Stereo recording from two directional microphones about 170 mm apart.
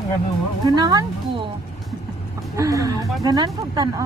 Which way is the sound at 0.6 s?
25° right (ahead or behind).